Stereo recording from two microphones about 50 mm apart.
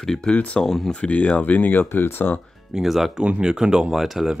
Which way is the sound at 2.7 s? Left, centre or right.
Centre.